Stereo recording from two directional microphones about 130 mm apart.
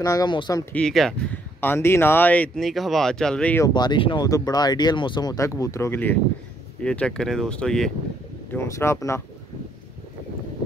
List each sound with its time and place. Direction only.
0.0 s speech: 30° left (ahead or behind)
0.7 s speech: 5° left (ahead or behind)
1.6 s speech: 15° left (ahead or behind)
2.6 s speech: centre (ahead or behind)
3.6 s speech: 30° left (ahead or behind); by 7.9 s 5° left (ahead or behind)
8.5 s speech: 20° left (ahead or behind)